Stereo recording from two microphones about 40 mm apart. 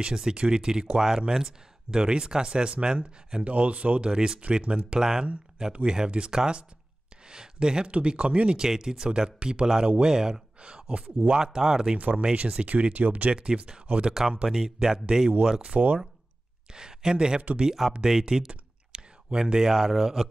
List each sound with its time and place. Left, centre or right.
0.0 s speech: centre
3.4 s speech: right
4.1 s speech: right
5.0 s speech: centre; by 8.5 s right
8.5 s speech: centre
11.4 s speech: centre
12.0 s speech: right
13.3 s speech: right
13.9 s speech: right
14.5 s speech: centre
15.5 s speech: right; by 20.2 s centre